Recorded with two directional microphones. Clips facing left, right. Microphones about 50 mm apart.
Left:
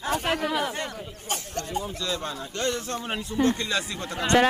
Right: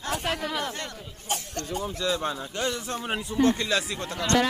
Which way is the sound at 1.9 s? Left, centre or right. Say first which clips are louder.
Right 3 dB; right.